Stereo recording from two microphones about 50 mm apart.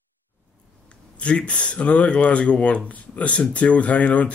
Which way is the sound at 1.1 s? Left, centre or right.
Left.